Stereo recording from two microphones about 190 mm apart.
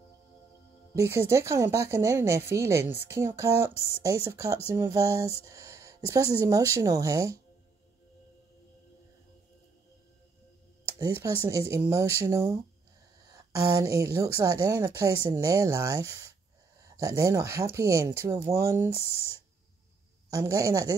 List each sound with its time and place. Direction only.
0.9 s speech: 15° right (ahead or behind)
11.0 s speech: 15° right (ahead or behind)
13.7 s speech: 15° right (ahead or behind)
20.2 s speech: 15° right (ahead or behind)